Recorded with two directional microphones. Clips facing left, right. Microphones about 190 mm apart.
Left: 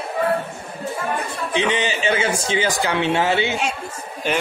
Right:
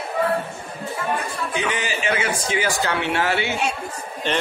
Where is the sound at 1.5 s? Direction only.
25° left (ahead or behind).